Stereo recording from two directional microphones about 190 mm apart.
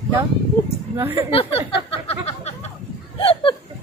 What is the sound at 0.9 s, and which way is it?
Speech, 10° right (ahead or behind).